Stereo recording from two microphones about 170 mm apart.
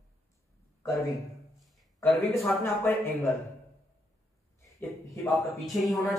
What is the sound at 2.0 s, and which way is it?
A man's voice, 10° left (ahead or behind).